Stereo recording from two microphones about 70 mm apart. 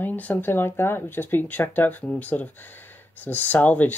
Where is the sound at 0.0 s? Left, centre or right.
Left.